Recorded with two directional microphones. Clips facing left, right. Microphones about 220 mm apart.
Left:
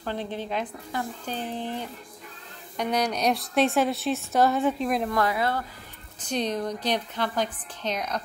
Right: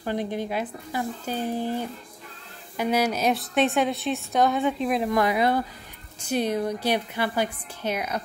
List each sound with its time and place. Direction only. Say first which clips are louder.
0.0 s a woman's voice: right 4 dB; 10° right (ahead or behind)
5.1 s a woman's voice: right 4 dB; 15° right (ahead or behind)